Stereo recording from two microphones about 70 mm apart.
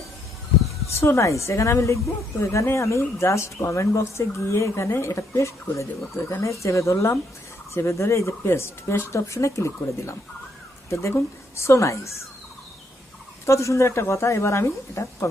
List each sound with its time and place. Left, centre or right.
0.7 s speech: left
13.5 s a woman's voice: left